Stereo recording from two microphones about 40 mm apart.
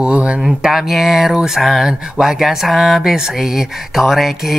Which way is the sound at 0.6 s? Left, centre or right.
Centre.